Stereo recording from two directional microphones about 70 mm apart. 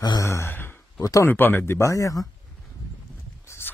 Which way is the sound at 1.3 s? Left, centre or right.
Left.